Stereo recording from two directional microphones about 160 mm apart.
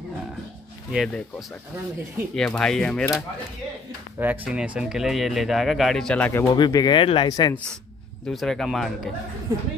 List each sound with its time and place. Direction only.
0.9 s speech: 5° left (ahead or behind)
4.2 s speech: 5° right (ahead or behind)
6.3 s speech: 25° left (ahead or behind)
8.3 s speech: centre (ahead or behind)